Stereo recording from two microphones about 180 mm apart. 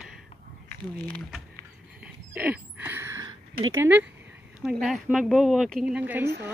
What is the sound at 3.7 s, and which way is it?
Speech, 10° right (ahead or behind).